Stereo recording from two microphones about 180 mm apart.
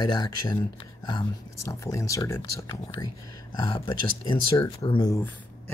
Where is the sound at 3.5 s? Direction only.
25° left (ahead or behind).